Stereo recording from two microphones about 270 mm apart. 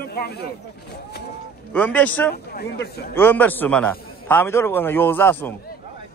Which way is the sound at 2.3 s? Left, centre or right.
Left.